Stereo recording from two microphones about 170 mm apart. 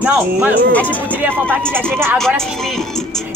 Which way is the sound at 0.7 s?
10° left (ahead or behind).